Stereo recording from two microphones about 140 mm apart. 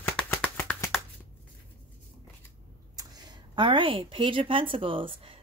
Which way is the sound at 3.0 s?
35° right (ahead or behind).